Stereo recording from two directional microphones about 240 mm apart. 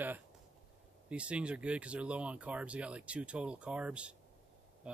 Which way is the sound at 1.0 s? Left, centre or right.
Centre.